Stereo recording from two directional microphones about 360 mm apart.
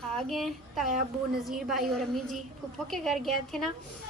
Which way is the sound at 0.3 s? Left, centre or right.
Centre.